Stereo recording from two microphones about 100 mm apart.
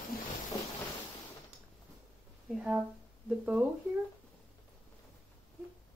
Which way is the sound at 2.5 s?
10° right (ahead or behind).